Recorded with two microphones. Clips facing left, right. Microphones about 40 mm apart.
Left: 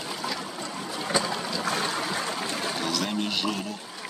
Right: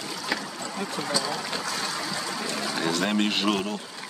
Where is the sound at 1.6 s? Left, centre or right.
Left.